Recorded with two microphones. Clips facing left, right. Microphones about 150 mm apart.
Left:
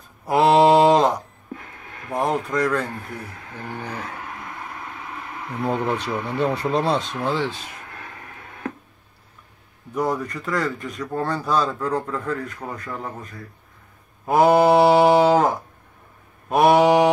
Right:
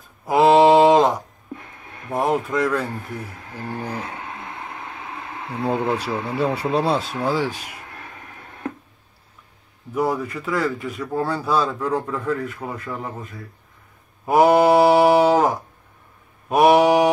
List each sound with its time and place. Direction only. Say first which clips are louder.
0.2 s mantra: right 2 dB; centre (ahead or behind)
2.1 s speech: right 1 dB; 5° right (ahead or behind)
3.5 s speech: right 3 dB; 35° right (ahead or behind)
3.8 s speech: right 3 dB; 10° right (ahead or behind)
4.1 s a sound: right 1 dB; 25° right (ahead or behind)
6.3 s speech: even; 5° right (ahead or behind)
9.9 s speech: right 1 dB; 5° right (ahead or behind)
14.2 s mantra: right 1 dB; 10° right (ahead or behind)